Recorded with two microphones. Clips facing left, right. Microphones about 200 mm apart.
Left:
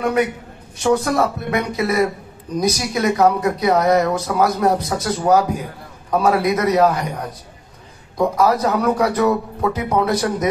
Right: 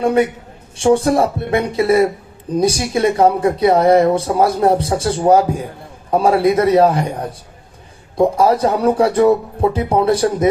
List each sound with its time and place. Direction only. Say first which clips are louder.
0.0 s speech: right 4 dB; 30° right (ahead or behind)